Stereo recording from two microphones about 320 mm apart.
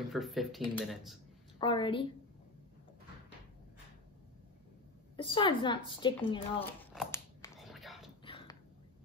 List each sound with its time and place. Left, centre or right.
0.1 s speech: centre
1.6 s speech: centre
5.1 s speech: centre
7.5 s a sound: centre
8.3 s dog: centre